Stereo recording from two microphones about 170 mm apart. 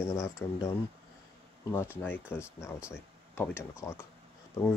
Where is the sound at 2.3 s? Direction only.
10° left (ahead or behind).